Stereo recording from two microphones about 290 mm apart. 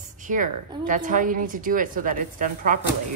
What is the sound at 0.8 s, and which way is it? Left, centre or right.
A woman's voice, right.